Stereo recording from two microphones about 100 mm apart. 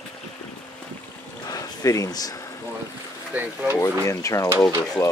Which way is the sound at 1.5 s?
35° left (ahead or behind).